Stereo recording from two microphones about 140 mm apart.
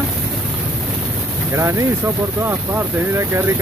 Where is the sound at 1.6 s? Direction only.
20° right (ahead or behind).